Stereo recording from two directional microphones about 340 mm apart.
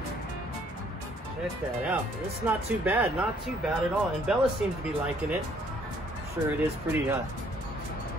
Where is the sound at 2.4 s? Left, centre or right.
Centre.